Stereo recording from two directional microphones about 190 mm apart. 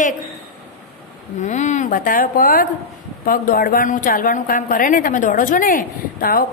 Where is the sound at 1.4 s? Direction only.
40° left (ahead or behind).